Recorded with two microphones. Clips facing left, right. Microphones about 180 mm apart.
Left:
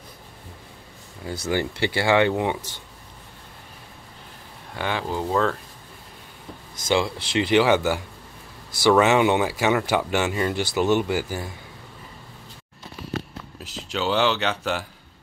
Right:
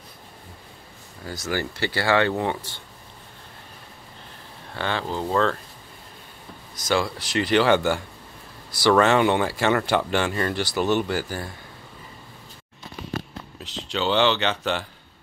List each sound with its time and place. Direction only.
1.4 s speech: 20° left (ahead or behind)
4.7 s speech: 10° left (ahead or behind)
6.9 s speech: 15° left (ahead or behind)
13.6 s speech: 5° left (ahead or behind)